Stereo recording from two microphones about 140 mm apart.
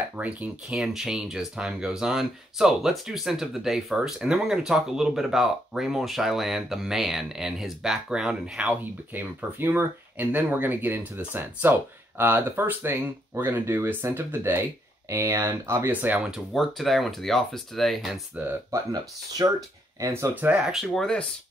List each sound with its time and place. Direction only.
0.2 s speech: 10° right (ahead or behind)
18.7 s speech: 25° right (ahead or behind); by 21.3 s 5° left (ahead or behind)